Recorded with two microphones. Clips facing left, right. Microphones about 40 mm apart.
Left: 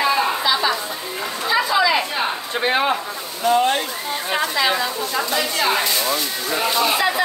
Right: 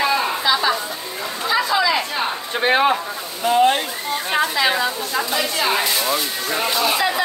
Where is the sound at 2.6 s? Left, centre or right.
Right.